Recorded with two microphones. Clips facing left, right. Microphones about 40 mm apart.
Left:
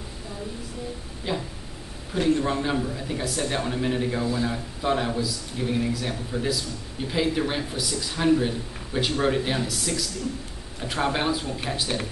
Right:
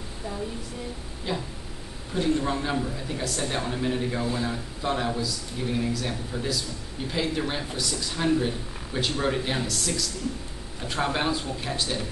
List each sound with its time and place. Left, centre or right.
1.3 s speech: centre
11.9 s speech: centre